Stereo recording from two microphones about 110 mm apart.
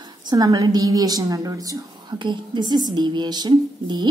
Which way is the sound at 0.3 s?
35° right (ahead or behind).